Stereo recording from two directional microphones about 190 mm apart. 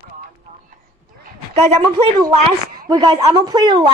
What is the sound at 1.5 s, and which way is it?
A woman's voice, 20° right (ahead or behind).